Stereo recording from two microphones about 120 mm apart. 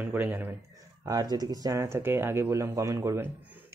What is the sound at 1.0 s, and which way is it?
Speech, 30° right (ahead or behind).